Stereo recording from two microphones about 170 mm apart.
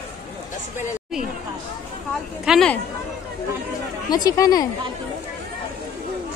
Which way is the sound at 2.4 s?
5° right (ahead or behind).